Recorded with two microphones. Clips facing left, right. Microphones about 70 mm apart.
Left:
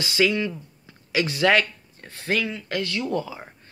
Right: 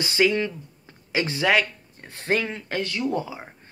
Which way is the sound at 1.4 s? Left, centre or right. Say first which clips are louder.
Left 2 dB; centre.